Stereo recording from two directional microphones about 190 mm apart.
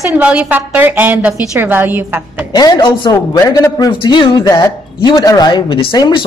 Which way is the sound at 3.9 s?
25° left (ahead or behind).